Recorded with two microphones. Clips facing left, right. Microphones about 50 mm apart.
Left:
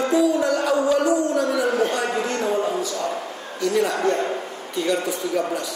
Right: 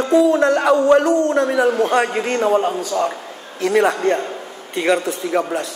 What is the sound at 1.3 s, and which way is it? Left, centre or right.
A man's voice, right.